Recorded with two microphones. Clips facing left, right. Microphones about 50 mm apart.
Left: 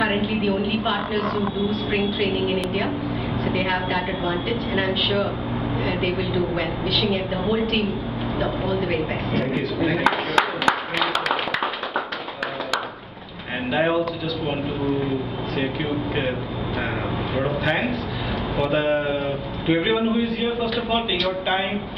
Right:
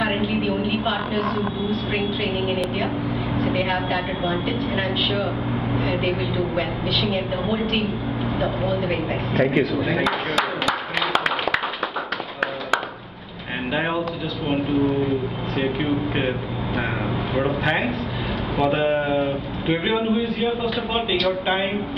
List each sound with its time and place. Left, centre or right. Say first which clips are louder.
0.0 s a woman's voice: left 1 dB; centre
10.0 s clapping: left 2 dB; left
13.7 s a woman's voice: left 4 dB; centre
15.0 s a woman's voice: right 1 dB; centre
17.4 s a woman's voice: right 1 dB; centre